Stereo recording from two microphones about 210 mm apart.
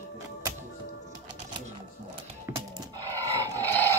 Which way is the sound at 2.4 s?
15° right (ahead or behind).